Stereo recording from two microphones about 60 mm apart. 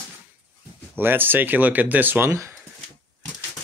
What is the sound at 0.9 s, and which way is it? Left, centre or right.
Speech, right.